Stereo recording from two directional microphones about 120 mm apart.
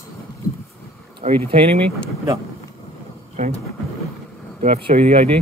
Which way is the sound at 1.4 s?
50° right (ahead or behind).